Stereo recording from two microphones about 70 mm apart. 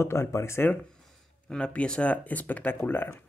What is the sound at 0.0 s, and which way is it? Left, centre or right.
Speech, left.